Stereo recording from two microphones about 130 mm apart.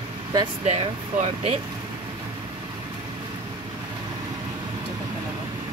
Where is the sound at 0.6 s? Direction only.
55° right (ahead or behind).